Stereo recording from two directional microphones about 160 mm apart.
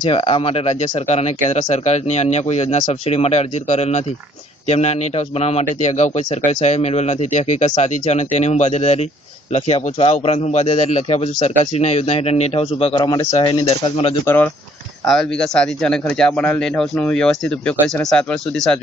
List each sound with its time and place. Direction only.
0.0 s a man's voice: 30° left (ahead or behind)
14.2 s speech: 10° left (ahead or behind)
15.0 s a man's voice: centre (ahead or behind)